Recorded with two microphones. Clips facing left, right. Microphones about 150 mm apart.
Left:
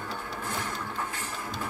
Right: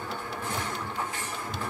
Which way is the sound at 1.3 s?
5° left (ahead or behind).